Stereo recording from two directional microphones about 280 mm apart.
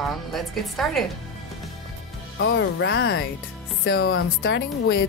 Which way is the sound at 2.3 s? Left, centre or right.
Left.